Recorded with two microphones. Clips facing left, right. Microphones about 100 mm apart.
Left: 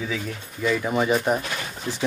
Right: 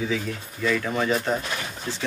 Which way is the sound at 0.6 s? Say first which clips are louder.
Left 2 dB; 15° left (ahead or behind).